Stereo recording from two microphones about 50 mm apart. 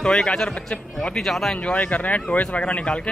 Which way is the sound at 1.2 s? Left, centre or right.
Centre.